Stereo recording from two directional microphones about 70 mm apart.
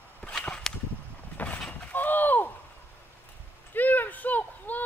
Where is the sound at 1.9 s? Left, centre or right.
Left.